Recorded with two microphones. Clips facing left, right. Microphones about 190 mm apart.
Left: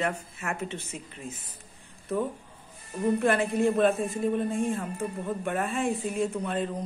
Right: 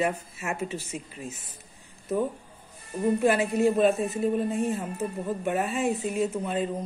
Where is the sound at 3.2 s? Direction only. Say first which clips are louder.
Right 3 dB; 5° right (ahead or behind).